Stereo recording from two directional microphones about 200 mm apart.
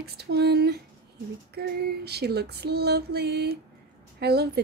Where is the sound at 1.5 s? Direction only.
55° right (ahead or behind).